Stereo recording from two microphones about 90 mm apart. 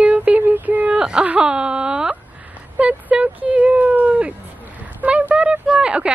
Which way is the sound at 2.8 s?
15° right (ahead or behind).